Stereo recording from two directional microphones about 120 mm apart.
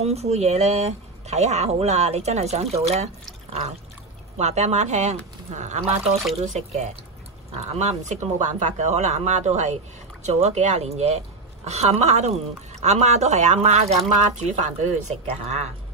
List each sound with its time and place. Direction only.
0.0 s speech: 60° right (ahead or behind)
4.4 s speech: 65° right (ahead or behind)
6.3 s speech: 65° right (ahead or behind)